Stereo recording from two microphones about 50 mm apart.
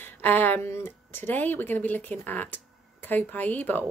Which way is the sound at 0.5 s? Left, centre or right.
Left.